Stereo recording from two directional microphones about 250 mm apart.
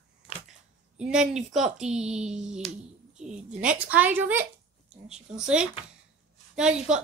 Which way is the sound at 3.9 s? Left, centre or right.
Centre.